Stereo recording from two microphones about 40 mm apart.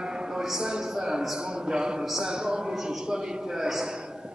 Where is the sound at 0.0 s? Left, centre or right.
Centre.